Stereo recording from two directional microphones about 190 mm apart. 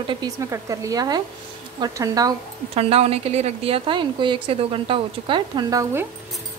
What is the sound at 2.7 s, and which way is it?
A woman's voice, 30° right (ahead or behind).